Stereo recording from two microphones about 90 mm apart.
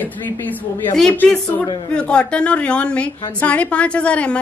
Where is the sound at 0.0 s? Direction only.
20° left (ahead or behind).